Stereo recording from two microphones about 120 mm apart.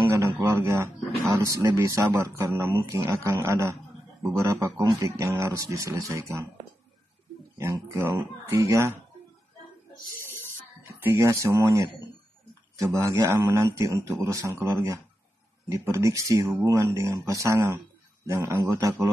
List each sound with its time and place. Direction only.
0.4 s a sound: 25° right (ahead or behind)
1.3 s a man's voice: 25° right (ahead or behind)
7.5 s a man's voice: 25° right (ahead or behind)
10.9 s a man's voice: 20° right (ahead or behind)